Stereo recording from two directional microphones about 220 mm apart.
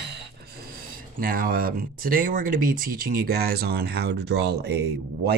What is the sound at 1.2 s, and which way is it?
Speech, 40° right (ahead or behind).